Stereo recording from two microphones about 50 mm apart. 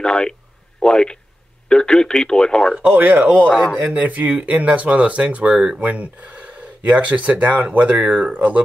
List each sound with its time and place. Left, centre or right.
0.0 s speech: centre
2.7 s speech: right